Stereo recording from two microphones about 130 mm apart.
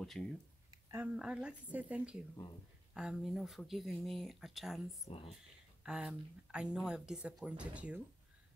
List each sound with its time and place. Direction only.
0.0 s speech: centre (ahead or behind)
0.9 s speech: 10° right (ahead or behind)
5.0 s speech: 45° left (ahead or behind)
5.9 s speech: 5° right (ahead or behind)